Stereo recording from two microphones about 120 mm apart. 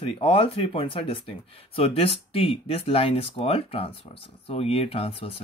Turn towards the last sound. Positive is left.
turn(degrees=55)  # may be behind; listen again after turning